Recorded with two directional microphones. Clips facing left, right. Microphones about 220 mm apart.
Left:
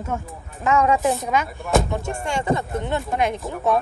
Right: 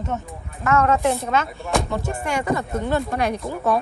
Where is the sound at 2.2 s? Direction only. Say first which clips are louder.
Left 1 dB; 25° left (ahead or behind).